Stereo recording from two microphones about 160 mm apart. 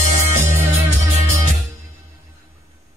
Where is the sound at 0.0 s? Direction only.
50° right (ahead or behind).